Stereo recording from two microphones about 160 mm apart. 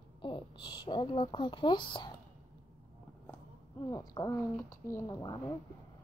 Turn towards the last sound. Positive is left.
turn(degrees=25)  # may be behind; listen again after turning